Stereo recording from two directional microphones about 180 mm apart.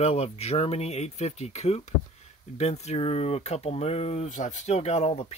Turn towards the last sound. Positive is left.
turn(degrees=35)  # may be behind; listen again after turning